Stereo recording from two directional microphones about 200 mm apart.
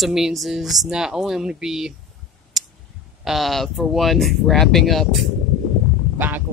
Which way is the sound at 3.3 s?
Centre (ahead or behind).